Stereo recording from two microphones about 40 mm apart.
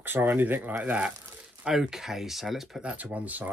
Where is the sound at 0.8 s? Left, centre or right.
Right.